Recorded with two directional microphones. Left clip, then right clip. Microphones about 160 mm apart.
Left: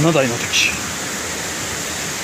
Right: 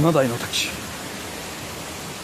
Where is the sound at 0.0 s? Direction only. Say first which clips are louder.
Left 3 dB; 30° right (ahead or behind).